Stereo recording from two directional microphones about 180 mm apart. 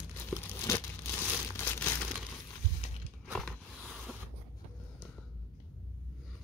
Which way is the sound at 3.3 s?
5° left (ahead or behind).